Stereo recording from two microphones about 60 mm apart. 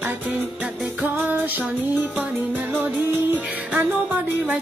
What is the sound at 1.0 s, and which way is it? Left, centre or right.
Music, right.